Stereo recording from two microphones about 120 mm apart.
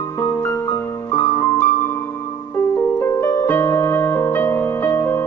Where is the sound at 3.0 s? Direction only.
20° left (ahead or behind).